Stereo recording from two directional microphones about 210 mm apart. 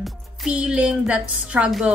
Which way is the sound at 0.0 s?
5° right (ahead or behind).